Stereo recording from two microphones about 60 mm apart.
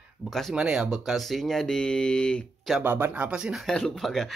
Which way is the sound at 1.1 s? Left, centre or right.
Centre.